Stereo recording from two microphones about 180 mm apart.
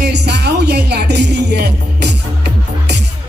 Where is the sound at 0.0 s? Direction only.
70° right (ahead or behind).